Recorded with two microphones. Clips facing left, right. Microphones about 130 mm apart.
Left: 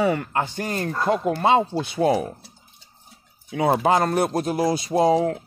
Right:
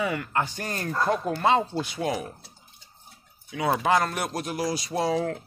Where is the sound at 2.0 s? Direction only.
35° left (ahead or behind).